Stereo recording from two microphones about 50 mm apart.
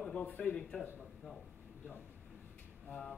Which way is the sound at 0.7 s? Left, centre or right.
Centre.